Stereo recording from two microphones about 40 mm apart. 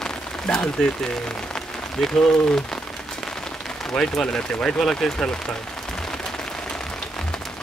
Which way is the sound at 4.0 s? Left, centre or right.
Centre.